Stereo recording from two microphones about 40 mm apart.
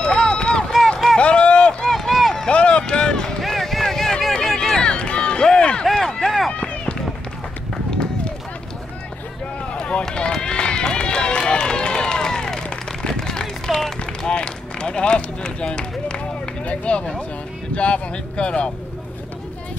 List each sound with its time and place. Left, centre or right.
0.3 s run: left
1.9 s run: centre
2.4 s run: left
3.3 s run: centre; by 5.5 s left
5.5 s a sound: left
6.2 s run: centre
6.5 s run: left
9.7 s run: left
13.1 s a sound: centre
14.2 s run: left
16.6 s speech: left